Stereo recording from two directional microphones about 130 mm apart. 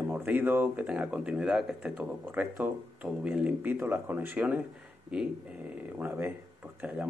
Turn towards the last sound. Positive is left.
turn(degrees=-10)  # may be behind; listen again after turning